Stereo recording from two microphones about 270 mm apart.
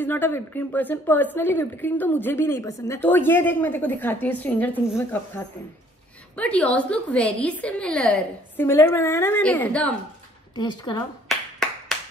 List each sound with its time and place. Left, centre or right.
0.0 s a woman's voice: centre
10.5 s a woman's voice: centre